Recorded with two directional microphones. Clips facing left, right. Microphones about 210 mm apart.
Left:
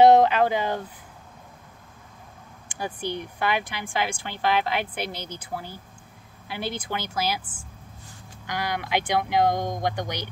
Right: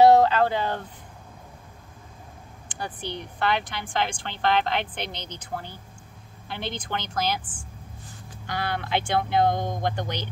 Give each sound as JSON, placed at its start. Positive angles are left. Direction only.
{"t": 0.0, "sound": "speech", "side_deg": 20}
{"t": 2.8, "sound": "speech", "side_deg": 10}
{"t": 8.5, "sound": "speech", "side_deg": 15}